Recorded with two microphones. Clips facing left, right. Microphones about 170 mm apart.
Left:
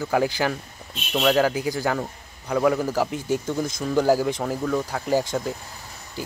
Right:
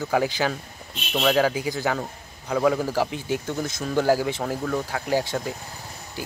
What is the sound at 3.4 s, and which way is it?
Speech, 10° left (ahead or behind).